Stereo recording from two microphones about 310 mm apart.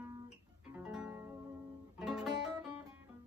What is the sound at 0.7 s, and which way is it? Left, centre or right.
Music, centre.